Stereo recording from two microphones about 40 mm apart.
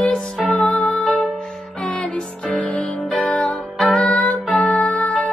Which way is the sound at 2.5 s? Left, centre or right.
Left.